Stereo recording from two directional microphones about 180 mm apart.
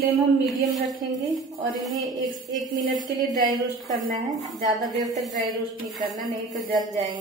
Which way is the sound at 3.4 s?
25° right (ahead or behind).